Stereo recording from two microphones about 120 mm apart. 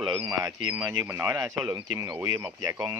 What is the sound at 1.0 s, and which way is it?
Speech, 15° right (ahead or behind).